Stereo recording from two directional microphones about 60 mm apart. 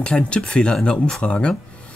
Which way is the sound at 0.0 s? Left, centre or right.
Centre.